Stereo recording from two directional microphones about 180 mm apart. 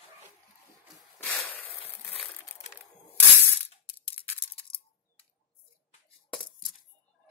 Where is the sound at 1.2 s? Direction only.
Centre (ahead or behind).